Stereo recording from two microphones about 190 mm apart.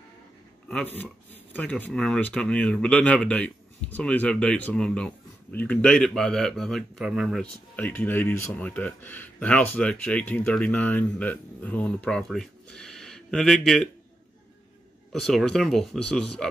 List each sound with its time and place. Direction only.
0.7 s speech: 5° left (ahead or behind)
15.1 s speech: centre (ahead or behind)